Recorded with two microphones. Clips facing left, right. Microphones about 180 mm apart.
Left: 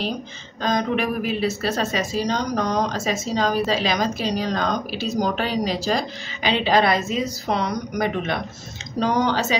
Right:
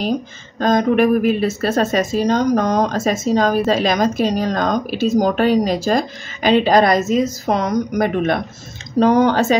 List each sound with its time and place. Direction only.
0.0 s speech: 45° right (ahead or behind)